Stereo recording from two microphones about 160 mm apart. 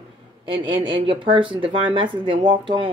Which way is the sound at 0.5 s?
35° right (ahead or behind).